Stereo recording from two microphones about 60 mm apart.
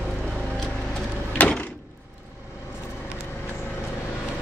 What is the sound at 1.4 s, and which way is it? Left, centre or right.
Door, left.